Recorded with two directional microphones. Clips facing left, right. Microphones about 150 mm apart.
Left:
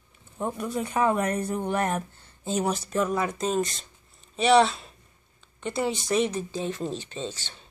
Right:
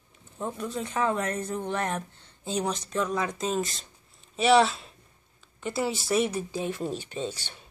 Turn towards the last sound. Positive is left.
turn(degrees=-10)  # may be behind; listen again after turning